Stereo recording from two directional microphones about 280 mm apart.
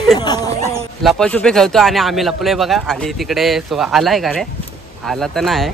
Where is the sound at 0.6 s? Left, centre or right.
Centre.